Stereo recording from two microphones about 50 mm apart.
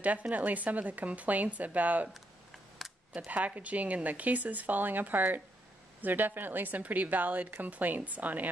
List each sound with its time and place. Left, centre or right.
0.0 s speech: right
3.3 s speech: right